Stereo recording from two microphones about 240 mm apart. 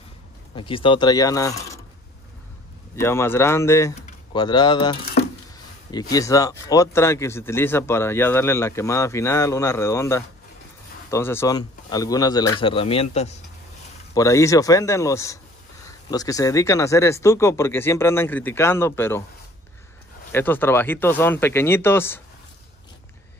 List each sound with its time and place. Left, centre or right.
0.6 s a man's voice: left
3.0 s a man's voice: centre
6.1 s a man's voice: centre
14.1 s a man's voice: centre
20.3 s a man's voice: centre